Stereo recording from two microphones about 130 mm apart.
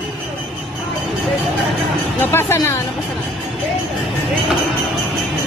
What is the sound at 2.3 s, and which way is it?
Music, 20° left (ahead or behind).